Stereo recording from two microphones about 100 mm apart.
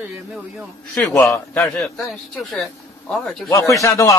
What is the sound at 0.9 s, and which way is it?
Speech, 15° left (ahead or behind).